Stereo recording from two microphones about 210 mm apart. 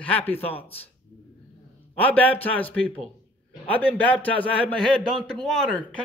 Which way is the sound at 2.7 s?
5° left (ahead or behind).